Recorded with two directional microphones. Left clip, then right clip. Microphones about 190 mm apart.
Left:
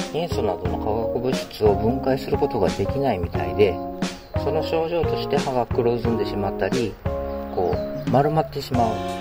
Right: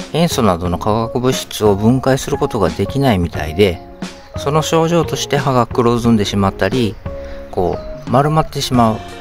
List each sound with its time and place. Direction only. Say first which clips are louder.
0.1 s speech: right 11 dB; 25° right (ahead or behind)